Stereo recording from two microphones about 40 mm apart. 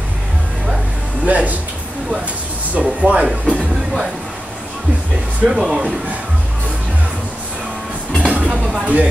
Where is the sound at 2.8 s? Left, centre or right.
Right.